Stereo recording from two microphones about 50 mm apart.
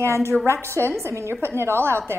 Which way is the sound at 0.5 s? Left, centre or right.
Right.